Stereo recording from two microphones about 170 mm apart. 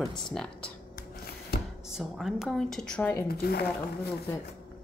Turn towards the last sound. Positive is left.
turn(degrees=65)  # may be behind; listen again after turning